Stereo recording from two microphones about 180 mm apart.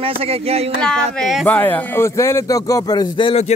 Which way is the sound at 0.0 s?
35° right (ahead or behind).